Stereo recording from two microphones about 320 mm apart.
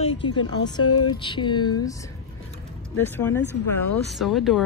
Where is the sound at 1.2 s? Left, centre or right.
Centre.